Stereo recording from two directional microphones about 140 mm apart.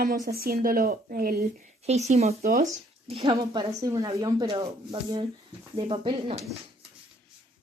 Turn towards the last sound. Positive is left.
turn(degrees=-40)  # may be behind; listen again after turning